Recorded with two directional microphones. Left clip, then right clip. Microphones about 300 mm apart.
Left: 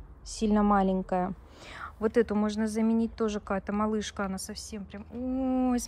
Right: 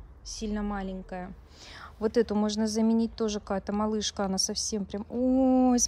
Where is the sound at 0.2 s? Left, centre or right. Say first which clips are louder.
Left 7 dB; centre.